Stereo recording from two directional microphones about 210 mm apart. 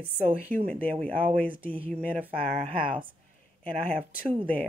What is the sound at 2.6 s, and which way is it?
Speech, 25° right (ahead or behind).